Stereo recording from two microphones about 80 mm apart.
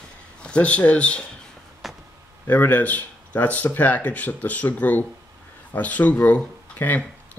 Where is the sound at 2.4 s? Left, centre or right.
Left.